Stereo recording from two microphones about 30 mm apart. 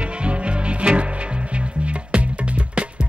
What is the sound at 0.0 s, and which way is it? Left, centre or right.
Music, right.